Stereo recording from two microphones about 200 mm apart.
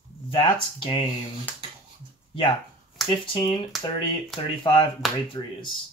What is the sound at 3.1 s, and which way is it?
Speech, 25° left (ahead or behind).